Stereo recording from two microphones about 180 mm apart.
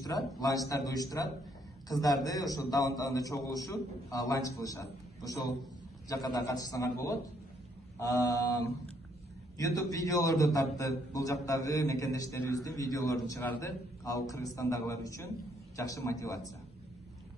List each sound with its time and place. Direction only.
0.0 s a man's voice: 20° left (ahead or behind)